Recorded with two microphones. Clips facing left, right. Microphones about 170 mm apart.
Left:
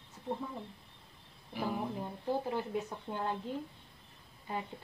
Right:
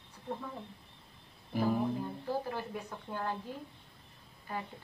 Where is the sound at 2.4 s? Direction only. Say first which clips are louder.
Left 4 dB; 20° left (ahead or behind).